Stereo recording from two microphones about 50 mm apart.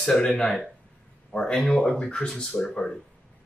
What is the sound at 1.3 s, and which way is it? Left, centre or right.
Speech, left.